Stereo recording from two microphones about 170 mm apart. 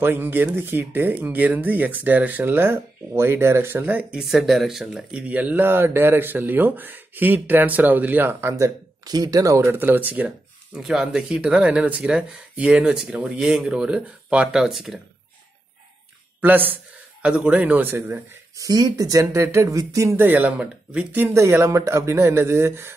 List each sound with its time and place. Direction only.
0.0 s speech: 10° right (ahead or behind)
16.3 s a man's voice: 10° right (ahead or behind)